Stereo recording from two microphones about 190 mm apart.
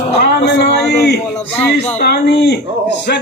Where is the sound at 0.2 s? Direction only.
60° left (ahead or behind).